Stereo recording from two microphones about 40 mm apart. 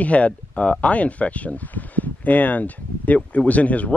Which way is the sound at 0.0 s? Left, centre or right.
Left.